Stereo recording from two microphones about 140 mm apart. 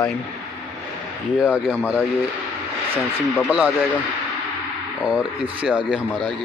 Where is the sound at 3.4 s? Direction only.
5° right (ahead or behind).